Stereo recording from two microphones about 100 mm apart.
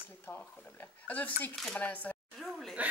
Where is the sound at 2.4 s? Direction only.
Centre (ahead or behind).